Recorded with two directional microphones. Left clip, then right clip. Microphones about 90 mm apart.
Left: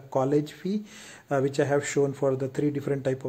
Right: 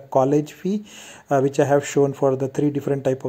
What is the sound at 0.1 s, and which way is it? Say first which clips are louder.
Speech: right 7 dB; 40° right (ahead or behind).